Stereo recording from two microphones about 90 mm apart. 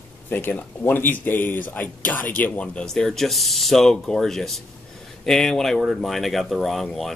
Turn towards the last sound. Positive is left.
turn(degrees=5)  # may be behind; listen again after turning